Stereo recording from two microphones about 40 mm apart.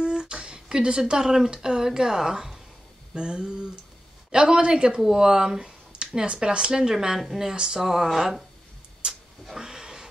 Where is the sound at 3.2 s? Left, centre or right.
Right; by 8.4 s centre.